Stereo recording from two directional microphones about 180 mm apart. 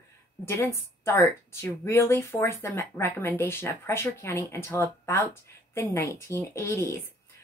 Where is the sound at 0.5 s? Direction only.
15° left (ahead or behind).